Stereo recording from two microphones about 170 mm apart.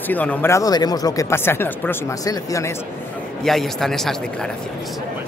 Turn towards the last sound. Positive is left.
turn(degrees=0)  # may be behind; listen again after turning